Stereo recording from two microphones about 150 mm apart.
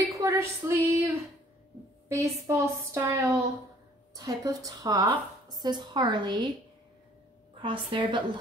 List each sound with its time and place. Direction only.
0.0 s a woman's voice: 20° right (ahead or behind)
7.6 s a woman's voice: 35° right (ahead or behind)